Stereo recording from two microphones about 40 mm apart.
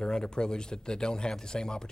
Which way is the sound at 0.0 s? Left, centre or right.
Centre.